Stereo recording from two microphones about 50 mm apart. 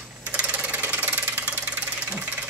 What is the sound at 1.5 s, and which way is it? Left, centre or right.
Engine, right.